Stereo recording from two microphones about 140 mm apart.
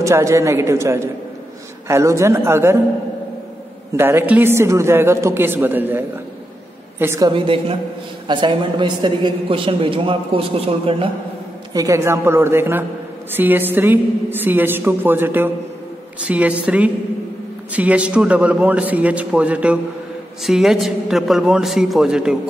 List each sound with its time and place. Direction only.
0.0 s a man's voice: 20° right (ahead or behind)
3.9 s a woman's voice: 15° right (ahead or behind)
7.2 s a woman's voice: 40° right (ahead or behind)
11.7 s a woman's voice: 25° right (ahead or behind); by 22.4 s 5° right (ahead or behind)